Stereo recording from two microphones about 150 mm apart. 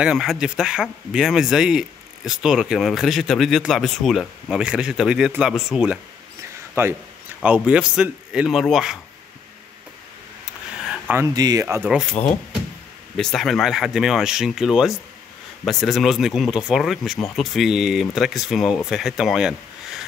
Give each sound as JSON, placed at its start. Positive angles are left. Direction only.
{"t": 0.0, "sound": "speech", "side_deg": -5}
{"t": 6.7, "sound": "speech", "side_deg": -15}
{"t": 10.9, "sound": "a sound", "side_deg": -10}
{"t": 11.2, "sound": "speech", "side_deg": -25}
{"t": 13.1, "sound": "speech", "side_deg": 0}